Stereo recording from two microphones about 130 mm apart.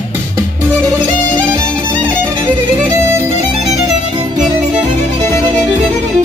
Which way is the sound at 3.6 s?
30° right (ahead or behind).